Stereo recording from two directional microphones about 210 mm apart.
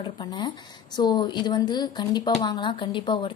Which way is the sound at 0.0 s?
20° left (ahead or behind).